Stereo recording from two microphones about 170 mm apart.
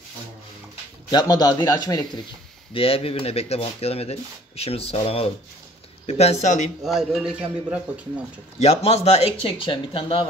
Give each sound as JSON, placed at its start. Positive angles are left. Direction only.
{"t": 1.1, "sound": "speech", "side_deg": 25}
{"t": 2.7, "sound": "speech", "side_deg": 35}
{"t": 6.8, "sound": "speech", "side_deg": 0}
{"t": 8.5, "sound": "speech", "side_deg": 40}